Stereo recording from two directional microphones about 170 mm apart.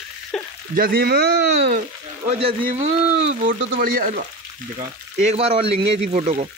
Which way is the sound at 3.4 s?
55° right (ahead or behind).